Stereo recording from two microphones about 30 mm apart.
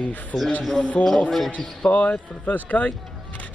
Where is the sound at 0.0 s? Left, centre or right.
Left.